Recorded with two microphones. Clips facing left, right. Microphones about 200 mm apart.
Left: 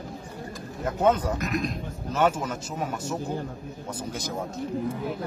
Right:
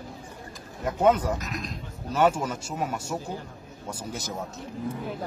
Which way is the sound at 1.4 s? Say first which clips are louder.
Left 7 dB; 55° left (ahead or behind).